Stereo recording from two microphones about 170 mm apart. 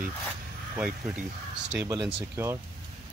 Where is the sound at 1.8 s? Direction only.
15° right (ahead or behind).